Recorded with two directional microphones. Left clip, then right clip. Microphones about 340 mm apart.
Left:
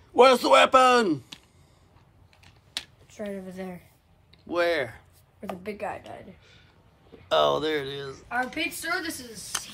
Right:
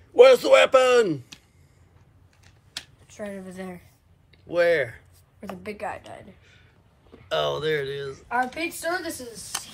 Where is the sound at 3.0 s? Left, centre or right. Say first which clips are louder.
Even; centre.